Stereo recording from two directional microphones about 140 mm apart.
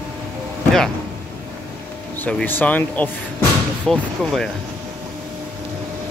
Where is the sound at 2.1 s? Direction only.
15° left (ahead or behind).